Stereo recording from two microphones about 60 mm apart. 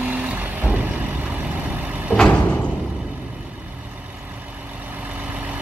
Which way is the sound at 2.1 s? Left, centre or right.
Right.